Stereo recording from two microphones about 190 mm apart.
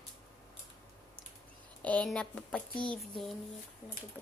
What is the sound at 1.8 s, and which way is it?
Speech, 5° left (ahead or behind).